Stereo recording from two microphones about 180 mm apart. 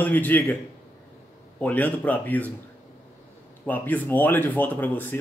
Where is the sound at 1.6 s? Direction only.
10° left (ahead or behind).